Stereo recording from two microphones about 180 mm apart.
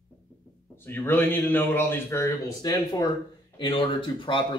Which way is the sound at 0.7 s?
10° left (ahead or behind).